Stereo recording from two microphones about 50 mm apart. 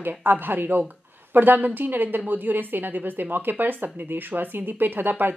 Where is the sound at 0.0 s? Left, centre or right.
Right.